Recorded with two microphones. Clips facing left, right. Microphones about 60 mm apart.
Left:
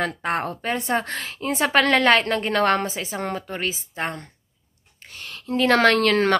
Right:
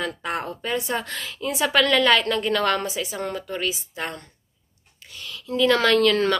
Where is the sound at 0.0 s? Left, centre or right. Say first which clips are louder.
Left 3 dB; left.